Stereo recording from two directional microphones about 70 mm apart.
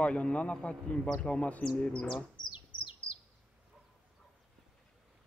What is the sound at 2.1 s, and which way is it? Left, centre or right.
Bird, left.